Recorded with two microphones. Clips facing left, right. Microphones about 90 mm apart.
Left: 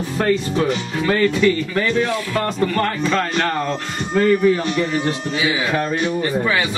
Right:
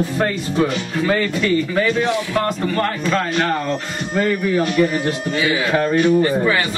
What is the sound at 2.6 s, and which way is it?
A man's voice, 5° right (ahead or behind).